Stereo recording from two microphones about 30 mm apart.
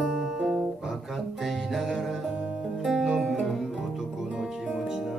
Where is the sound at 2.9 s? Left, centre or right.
Centre.